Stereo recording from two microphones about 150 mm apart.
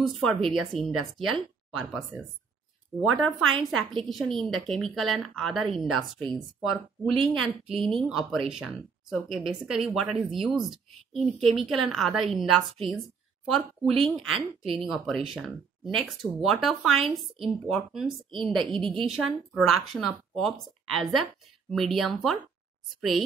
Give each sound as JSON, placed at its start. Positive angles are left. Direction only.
{"t": 0.0, "sound": "speech", "side_deg": 0}
{"t": 14.0, "sound": "speech", "side_deg": -35}
{"t": 14.7, "sound": "speech", "side_deg": 0}